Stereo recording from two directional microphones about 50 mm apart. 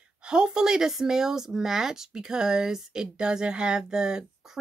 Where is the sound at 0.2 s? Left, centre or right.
Centre.